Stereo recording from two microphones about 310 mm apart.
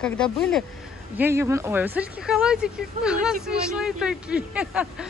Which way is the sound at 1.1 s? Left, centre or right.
Centre.